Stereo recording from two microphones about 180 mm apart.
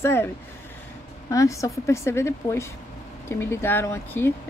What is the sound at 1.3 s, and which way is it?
A woman's voice, 20° left (ahead or behind).